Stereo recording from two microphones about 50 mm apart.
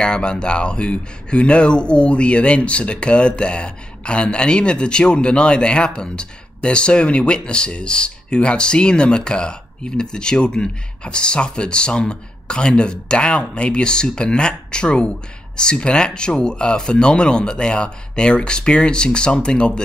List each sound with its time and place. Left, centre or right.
0.0 s speech: centre